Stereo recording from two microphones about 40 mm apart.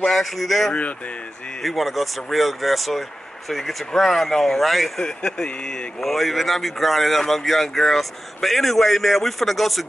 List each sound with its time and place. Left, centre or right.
0.1 s speech: centre
5.0 s speech: centre
5.9 s speech: centre